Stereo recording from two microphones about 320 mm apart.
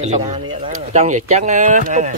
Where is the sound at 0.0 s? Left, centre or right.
Centre.